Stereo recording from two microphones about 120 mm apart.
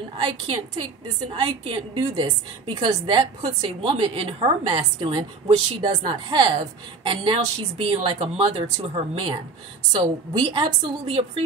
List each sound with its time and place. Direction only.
0.2 s a woman's voice: 45° right (ahead or behind)